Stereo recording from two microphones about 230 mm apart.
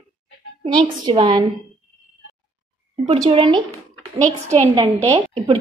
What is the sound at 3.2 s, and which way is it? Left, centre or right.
Speech, right.